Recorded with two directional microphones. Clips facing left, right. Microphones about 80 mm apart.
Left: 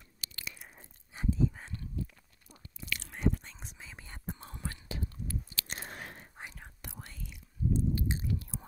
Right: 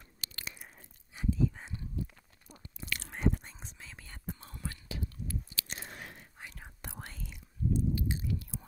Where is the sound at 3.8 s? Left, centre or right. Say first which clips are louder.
Left 1 dB; centre; by 5.1 s left.